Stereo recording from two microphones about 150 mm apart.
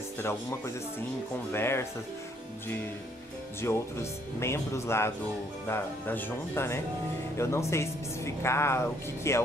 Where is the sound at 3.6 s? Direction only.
15° left (ahead or behind).